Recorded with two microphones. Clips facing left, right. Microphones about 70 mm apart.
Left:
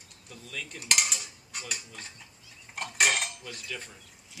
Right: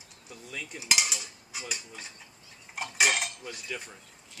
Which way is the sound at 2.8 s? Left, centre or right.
Centre.